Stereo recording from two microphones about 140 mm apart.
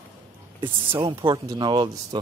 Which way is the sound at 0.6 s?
35° right (ahead or behind).